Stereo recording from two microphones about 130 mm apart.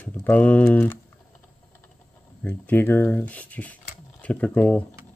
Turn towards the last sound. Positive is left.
turn(degrees=10)  # may be behind; listen again after turning